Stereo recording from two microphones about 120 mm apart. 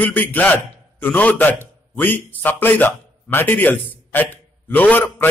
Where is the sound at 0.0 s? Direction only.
15° left (ahead or behind).